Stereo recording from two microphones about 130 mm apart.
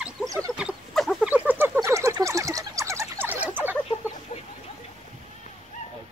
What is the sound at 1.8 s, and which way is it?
Duck, 25° right (ahead or behind).